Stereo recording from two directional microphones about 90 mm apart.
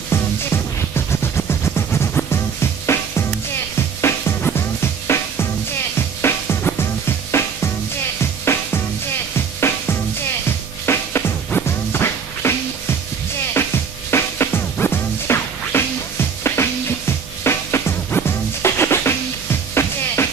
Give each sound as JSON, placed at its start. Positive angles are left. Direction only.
{"t": 0.1, "sound": "music", "side_deg": 30}
{"t": 4.6, "sound": "music", "side_deg": 30}
{"t": 10.9, "sound": "music", "side_deg": 25}
{"t": 13.6, "sound": "music", "side_deg": 30}